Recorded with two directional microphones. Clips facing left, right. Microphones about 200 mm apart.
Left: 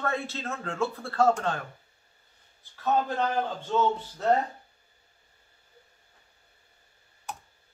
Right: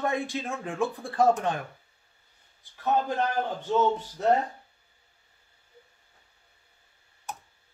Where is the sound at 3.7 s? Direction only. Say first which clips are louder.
Right 3 dB; 15° right (ahead or behind).